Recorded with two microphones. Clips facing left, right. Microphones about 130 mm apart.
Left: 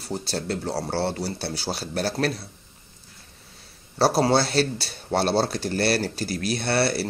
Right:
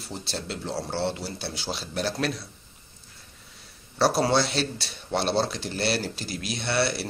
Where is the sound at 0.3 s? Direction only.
45° left (ahead or behind).